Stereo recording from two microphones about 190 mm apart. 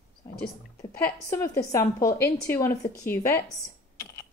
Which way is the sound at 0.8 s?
15° left (ahead or behind).